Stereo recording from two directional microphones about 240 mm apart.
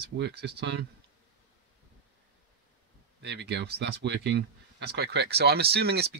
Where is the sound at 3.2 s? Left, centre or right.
Right.